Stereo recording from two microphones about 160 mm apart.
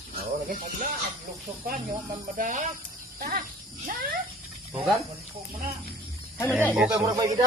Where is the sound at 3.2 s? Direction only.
60° right (ahead or behind).